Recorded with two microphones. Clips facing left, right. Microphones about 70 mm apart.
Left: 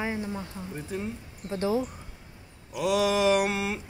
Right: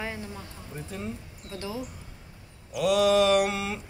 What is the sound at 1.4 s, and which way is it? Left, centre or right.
Speech, left.